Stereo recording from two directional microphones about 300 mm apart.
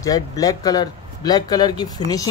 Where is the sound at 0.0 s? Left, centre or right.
Centre.